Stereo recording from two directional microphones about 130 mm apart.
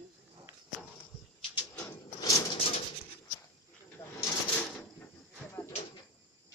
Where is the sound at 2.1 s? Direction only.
25° left (ahead or behind).